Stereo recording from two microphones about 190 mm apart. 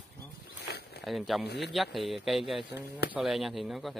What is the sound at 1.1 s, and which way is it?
Speech, centre (ahead or behind).